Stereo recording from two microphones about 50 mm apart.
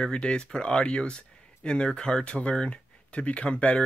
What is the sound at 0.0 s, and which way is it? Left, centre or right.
Speech, centre.